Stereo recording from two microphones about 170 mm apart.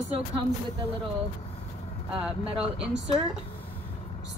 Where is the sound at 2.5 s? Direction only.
35° right (ahead or behind).